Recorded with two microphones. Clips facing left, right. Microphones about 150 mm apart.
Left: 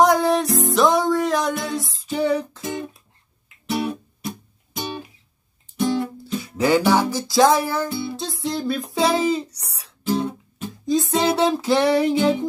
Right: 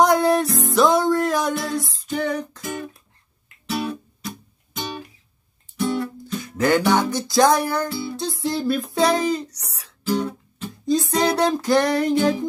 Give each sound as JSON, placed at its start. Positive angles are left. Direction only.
{"t": 0.0, "sound": "music", "side_deg": 0}
{"t": 0.5, "sound": "music", "side_deg": 20}
{"t": 0.7, "sound": "music", "side_deg": 0}
{"t": 1.5, "sound": "music", "side_deg": 20}
{"t": 2.0, "sound": "female singing", "side_deg": 10}
{"t": 2.6, "sound": "music", "side_deg": 25}
{"t": 3.6, "sound": "guitar", "side_deg": 25}
{"t": 6.4, "sound": "music", "side_deg": 10}
{"t": 7.9, "sound": "music", "side_deg": 25}
{"t": 8.3, "sound": "music", "side_deg": 0}
{"t": 10.0, "sound": "guitar", "side_deg": 25}
{"t": 10.9, "sound": "music", "side_deg": 0}